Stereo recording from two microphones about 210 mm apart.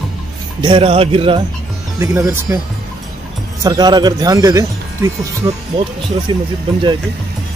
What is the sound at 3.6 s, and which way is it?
Speech, 20° right (ahead or behind).